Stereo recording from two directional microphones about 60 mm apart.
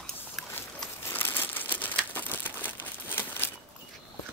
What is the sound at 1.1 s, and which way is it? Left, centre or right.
Crumpling, left.